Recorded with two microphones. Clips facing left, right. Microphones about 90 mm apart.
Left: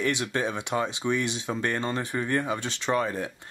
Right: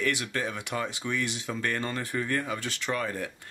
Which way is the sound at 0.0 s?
20° left (ahead or behind).